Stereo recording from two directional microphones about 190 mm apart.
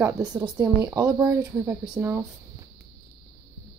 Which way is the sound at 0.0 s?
20° right (ahead or behind).